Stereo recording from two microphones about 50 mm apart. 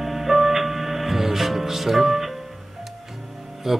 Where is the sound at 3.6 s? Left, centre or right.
Centre.